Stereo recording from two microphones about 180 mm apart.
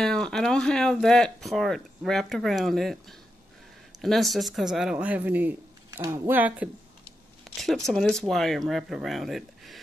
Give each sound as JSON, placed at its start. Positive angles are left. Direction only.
{"t": 0.0, "sound": "speech", "side_deg": 5}
{"t": 7.5, "sound": "speech", "side_deg": 0}